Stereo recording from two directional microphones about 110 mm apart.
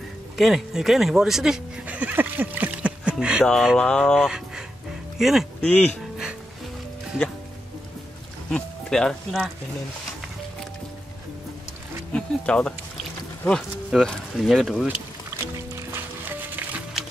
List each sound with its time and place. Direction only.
0.4 s speech: 5° right (ahead or behind)
3.7 s speech: 5° left (ahead or behind)
5.6 s speech: 10° left (ahead or behind)
8.5 s speech: 5° left (ahead or behind)
12.1 s boat: 10° left (ahead or behind)
13.5 s speech: 5° left (ahead or behind)
15.4 s music: 25° right (ahead or behind)